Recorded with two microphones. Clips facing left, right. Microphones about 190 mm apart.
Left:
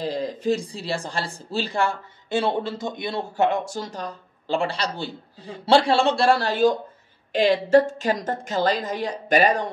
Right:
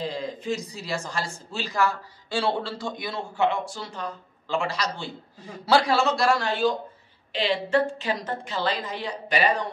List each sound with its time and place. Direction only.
0.0 s speech: 40° left (ahead or behind)
3.3 s a woman's voice: 45° left (ahead or behind)